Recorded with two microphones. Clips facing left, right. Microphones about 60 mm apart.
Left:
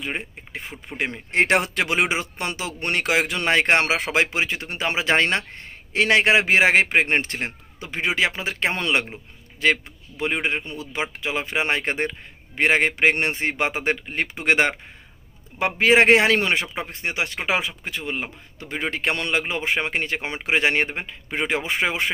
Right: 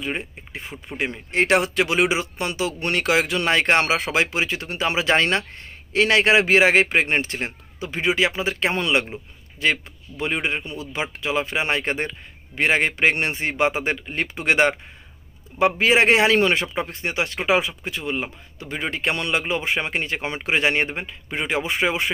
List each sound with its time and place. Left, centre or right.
0.0 s speech: left